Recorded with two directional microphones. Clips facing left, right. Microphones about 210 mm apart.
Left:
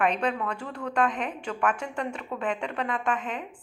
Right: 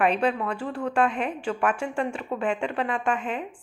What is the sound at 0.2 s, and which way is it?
A woman's voice, 10° right (ahead or behind).